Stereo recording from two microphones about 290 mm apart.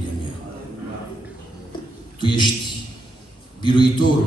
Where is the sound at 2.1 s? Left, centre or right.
Centre.